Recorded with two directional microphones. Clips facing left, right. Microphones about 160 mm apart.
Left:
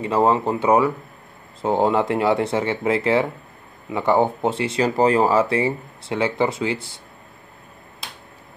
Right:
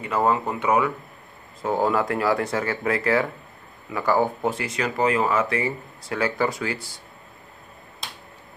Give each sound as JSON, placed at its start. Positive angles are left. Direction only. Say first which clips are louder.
{"t": 0.0, "sound": "speech", "louder": "left 4 dB", "side_deg": 25}